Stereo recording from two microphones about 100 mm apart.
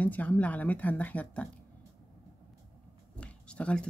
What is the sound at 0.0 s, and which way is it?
Speech, 15° left (ahead or behind).